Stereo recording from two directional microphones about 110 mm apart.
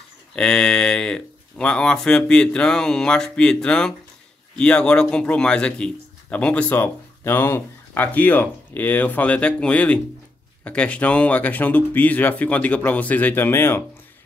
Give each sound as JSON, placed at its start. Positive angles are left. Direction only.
{"t": 0.4, "sound": "speech", "side_deg": 5}